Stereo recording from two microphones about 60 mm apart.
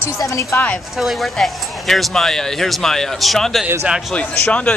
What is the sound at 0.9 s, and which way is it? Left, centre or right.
Speech, centre.